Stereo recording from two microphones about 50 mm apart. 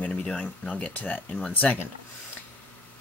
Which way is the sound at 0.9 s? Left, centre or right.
Left.